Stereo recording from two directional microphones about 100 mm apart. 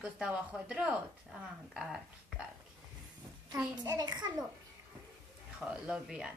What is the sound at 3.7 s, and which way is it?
Speech, 45° right (ahead or behind).